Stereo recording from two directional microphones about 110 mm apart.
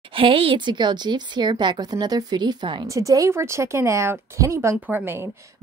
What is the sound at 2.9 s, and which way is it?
Speech, 30° right (ahead or behind).